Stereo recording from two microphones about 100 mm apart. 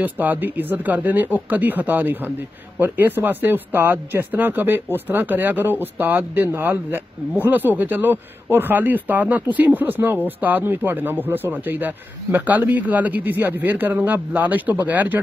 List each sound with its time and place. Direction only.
0.0 s speech: 20° right (ahead or behind)